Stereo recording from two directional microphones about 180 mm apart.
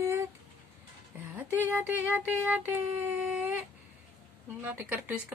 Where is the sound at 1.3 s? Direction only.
10° right (ahead or behind).